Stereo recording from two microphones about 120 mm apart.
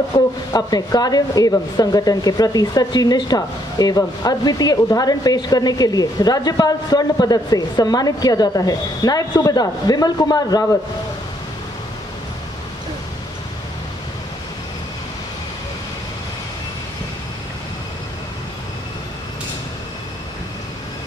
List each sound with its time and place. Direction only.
0.1 s speech: 30° left (ahead or behind)